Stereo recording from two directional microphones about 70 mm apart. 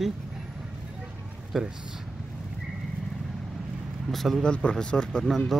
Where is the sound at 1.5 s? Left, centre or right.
Centre.